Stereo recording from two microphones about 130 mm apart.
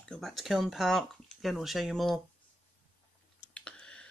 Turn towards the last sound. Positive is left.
turn(degrees=5)  # may be behind; listen again after turning